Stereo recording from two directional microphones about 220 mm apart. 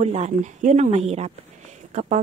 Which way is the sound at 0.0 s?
30° right (ahead or behind).